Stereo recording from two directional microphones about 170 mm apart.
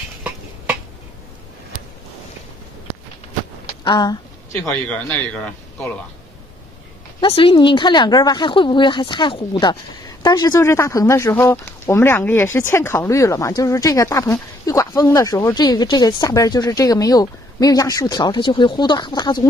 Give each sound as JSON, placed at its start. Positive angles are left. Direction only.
{"t": 3.8, "sound": "speech", "side_deg": 25}
{"t": 4.7, "sound": "speech", "side_deg": 10}
{"t": 7.2, "sound": "speech", "side_deg": 30}